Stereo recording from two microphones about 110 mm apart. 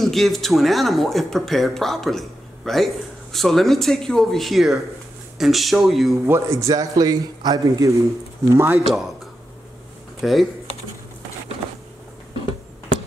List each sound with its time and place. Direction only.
0.0 s speech: centre (ahead or behind)
6.2 s speech: 25° right (ahead or behind)
6.7 s a man's voice: 35° right (ahead or behind)
8.8 s speech: centre (ahead or behind)
10.2 s speech: centre (ahead or behind)